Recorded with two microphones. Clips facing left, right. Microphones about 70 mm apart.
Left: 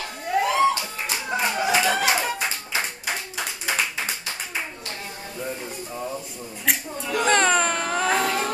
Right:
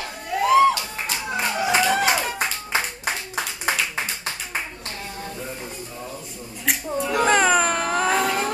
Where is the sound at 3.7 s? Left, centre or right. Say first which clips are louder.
Right 1 dB; right.